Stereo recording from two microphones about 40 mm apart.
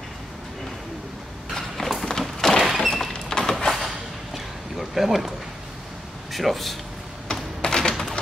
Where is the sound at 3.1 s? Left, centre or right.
Centre.